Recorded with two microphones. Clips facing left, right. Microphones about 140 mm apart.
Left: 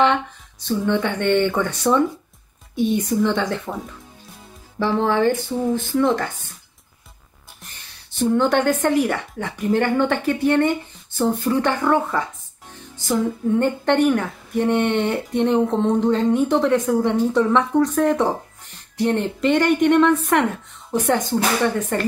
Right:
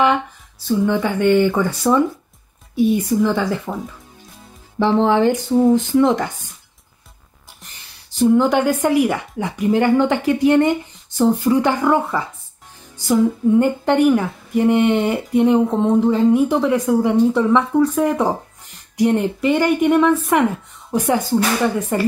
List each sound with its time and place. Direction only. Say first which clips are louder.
0.7 s a woman's voice: right 3 dB; 5° right (ahead or behind)
4.7 s a woman's voice: right 4 dB; 20° right (ahead or behind)
8.2 s a woman's voice: right 3 dB; 10° right (ahead or behind)